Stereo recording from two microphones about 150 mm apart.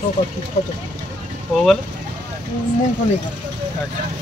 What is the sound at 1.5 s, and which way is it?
Speech, centre (ahead or behind).